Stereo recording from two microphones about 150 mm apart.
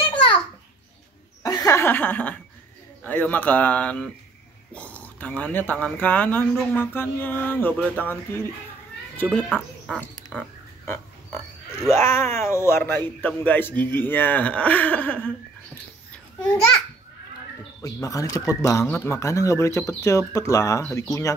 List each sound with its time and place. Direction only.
1.4 s chuckle: 20° left (ahead or behind)
3.0 s speech: 10° left (ahead or behind)
11.9 s speech: 15° left (ahead or behind)
17.8 s speech: 25° left (ahead or behind)